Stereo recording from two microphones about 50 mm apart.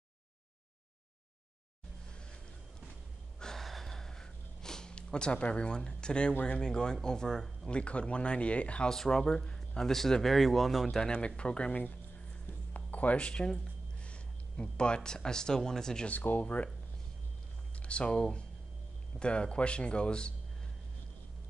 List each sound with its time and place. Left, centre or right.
3.3 s gasp: centre
6.4 s speech: centre
7.7 s speech: left
8.9 s speech: centre
11.0 s speech: left
11.7 s speech: left
12.4 s a sound: left
15.0 s speech: centre
16.1 s speech: left
17.8 s speech: left